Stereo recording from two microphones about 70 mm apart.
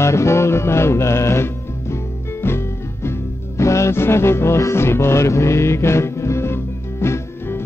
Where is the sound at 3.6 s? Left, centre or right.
Left.